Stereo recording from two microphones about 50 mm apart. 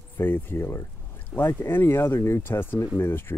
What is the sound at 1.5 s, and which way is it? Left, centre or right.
Speech, left.